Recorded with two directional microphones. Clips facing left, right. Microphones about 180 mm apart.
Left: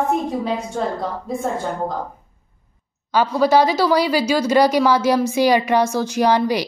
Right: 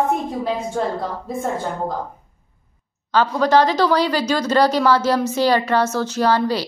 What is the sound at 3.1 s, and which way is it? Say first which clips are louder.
Speech: even; 10° left (ahead or behind).